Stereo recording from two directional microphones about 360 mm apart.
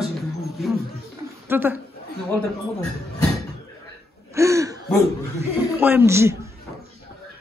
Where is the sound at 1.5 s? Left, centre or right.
Centre.